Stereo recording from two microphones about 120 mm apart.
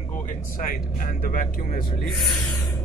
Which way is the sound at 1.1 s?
90° left.